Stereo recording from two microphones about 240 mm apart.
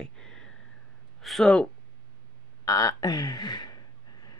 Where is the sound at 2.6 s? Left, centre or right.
Centre.